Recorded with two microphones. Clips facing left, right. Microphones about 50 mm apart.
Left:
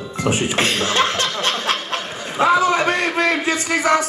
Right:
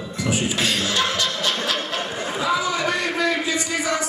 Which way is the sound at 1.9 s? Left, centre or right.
Left.